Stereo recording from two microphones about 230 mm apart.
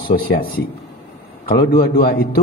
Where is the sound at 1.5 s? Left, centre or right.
Left.